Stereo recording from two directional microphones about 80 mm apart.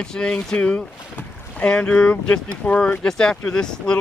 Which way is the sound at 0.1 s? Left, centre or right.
Centre.